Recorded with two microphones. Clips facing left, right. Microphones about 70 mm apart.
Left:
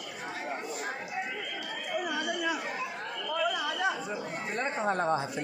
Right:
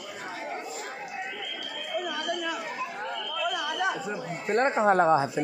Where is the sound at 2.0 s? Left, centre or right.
Centre.